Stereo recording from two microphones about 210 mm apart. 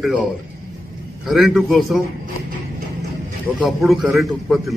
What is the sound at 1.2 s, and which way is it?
Speech, centre (ahead or behind).